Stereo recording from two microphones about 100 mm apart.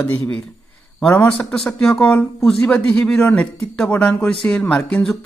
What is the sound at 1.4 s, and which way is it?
Speech, 5° left (ahead or behind).